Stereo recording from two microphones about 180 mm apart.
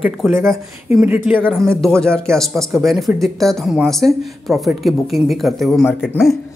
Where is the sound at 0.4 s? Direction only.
10° right (ahead or behind).